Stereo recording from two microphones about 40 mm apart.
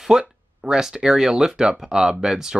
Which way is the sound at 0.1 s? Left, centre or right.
Centre.